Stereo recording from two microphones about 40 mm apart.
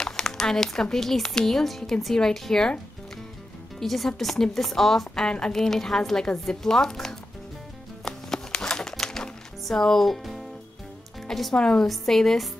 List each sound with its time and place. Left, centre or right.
0.0 s crumpling: centre
0.9 s a woman's voice: centre
3.8 s a woman's voice: centre
5.2 s a woman's voice: centre
5.5 s a woman's voice: centre
8.0 s music: centre
11.2 s speech: centre
11.5 s a woman's voice: centre